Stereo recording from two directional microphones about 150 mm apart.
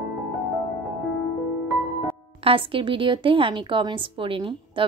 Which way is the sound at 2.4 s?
35° right (ahead or behind).